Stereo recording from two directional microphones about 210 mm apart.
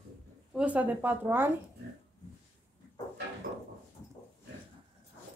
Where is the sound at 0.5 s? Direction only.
5° right (ahead or behind).